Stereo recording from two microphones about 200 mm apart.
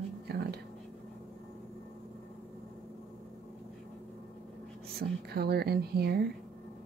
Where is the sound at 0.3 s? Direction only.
55° right (ahead or behind).